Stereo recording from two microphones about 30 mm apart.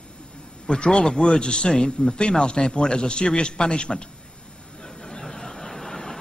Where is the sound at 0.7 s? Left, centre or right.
Left.